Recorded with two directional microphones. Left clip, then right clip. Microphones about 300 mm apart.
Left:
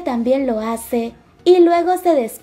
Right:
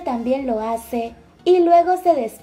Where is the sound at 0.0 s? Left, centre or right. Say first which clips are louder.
Left 4 dB; left.